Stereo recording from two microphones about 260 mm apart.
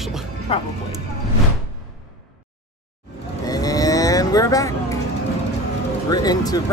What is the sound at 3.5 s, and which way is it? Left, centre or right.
Cattle, centre.